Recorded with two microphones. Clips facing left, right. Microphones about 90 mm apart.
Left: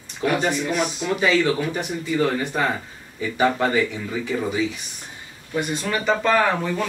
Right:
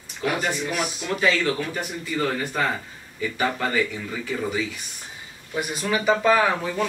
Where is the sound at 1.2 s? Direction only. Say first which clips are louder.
Left 3 dB; 20° left (ahead or behind).